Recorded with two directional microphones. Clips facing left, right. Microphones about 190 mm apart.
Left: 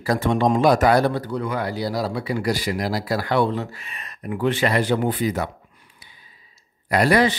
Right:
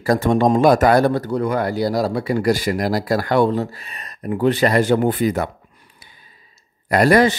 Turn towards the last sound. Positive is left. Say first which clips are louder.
# right 4 dB
turn(degrees=-45)  # may be behind; listen again after turning